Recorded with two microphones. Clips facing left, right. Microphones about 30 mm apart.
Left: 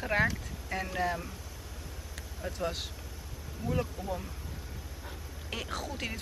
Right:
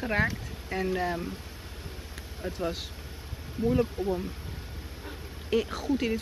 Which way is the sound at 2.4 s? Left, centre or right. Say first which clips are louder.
Right 2 dB; right.